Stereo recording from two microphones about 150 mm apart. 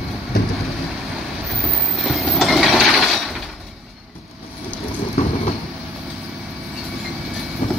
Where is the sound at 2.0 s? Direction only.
Centre (ahead or behind).